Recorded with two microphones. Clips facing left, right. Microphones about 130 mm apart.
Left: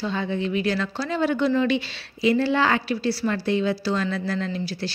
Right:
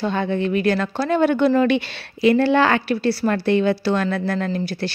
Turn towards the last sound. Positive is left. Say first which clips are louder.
# right 4 dB
turn(degrees=-55)  # may be behind; listen again after turning